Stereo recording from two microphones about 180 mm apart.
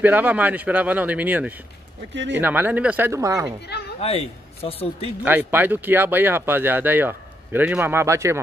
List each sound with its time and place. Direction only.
0.0 s speech: 10° right (ahead or behind)
2.1 s speech: 85° right
2.4 s speech: 10° right (ahead or behind)
4.0 s speech: 35° left (ahead or behind)
5.2 s speech: 10° right (ahead or behind)